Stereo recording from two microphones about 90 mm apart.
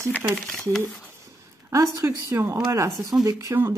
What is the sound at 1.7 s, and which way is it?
Speech, 35° right (ahead or behind).